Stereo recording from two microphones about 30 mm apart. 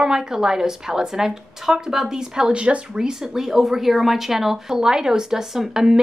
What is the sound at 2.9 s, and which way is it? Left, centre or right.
A woman's voice, right.